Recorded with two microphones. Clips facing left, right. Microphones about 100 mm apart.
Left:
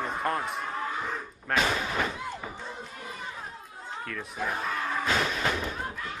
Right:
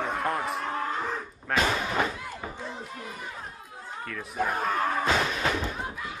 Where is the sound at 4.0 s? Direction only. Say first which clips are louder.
Right 4 dB; centre (ahead or behind).